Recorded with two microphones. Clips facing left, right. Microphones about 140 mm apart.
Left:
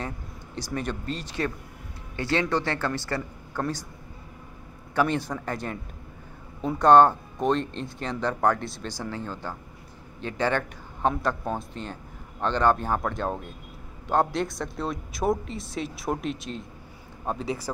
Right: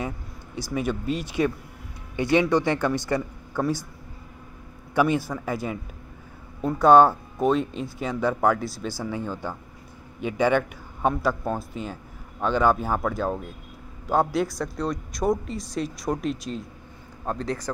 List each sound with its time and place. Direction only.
0.6 s speech: 10° right (ahead or behind)
4.9 s a man's voice: 10° right (ahead or behind)